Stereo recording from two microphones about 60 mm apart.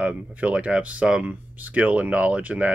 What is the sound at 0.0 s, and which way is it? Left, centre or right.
Speech, right.